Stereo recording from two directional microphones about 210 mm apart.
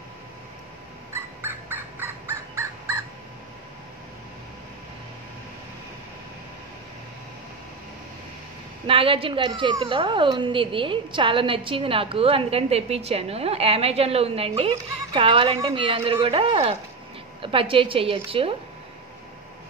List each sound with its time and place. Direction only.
1.1 s bird: 10° right (ahead or behind)
8.8 s speech: 25° right (ahead or behind)